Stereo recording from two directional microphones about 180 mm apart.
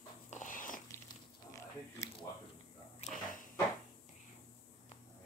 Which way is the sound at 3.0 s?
45° left (ahead or behind).